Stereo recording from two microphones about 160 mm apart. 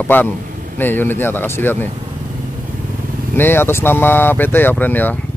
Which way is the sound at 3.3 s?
15° left (ahead or behind).